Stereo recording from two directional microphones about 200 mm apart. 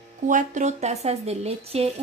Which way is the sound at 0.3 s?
40° right (ahead or behind).